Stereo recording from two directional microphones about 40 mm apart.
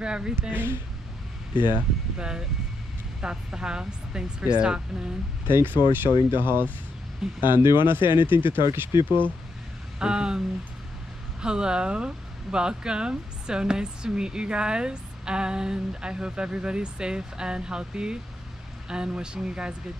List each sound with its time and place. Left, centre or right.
0.0 s speech: right
0.4 s speech: right
2.1 s speech: right
5.5 s speech: right
9.9 s speech: right
11.4 s speech: right